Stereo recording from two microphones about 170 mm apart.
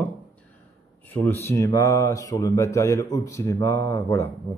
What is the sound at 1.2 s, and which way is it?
Speech, 15° left (ahead or behind).